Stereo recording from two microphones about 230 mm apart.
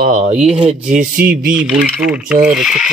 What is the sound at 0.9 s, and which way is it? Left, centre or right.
Speech, right.